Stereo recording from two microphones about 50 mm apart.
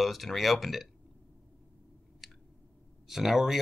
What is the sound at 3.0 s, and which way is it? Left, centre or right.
Speech, centre.